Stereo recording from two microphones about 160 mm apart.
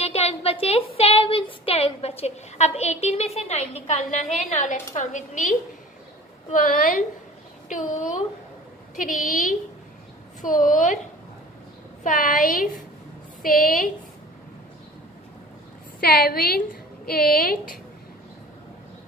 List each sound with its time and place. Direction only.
0.0 s a woman's voice: 40° left (ahead or behind)
12.0 s a woman's voice: 55° left (ahead or behind)
16.0 s a woman's voice: 75° left (ahead or behind)